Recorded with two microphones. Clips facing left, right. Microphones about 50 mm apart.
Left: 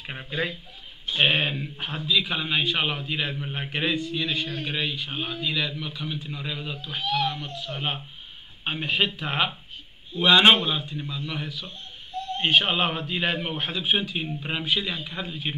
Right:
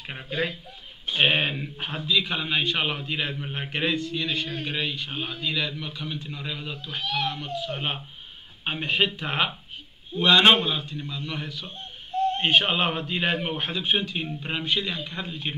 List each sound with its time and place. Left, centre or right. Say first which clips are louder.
0.0 s a man's voice: right 1 dB; centre
11.6 s owl: right 1 dB; right
12.4 s a man's voice: left 4 dB; centre